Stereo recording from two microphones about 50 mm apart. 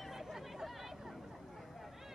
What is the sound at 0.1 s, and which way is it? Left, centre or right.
Chatter, centre.